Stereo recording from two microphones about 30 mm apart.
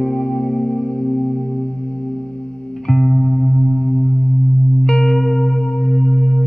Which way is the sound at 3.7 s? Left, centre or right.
Left.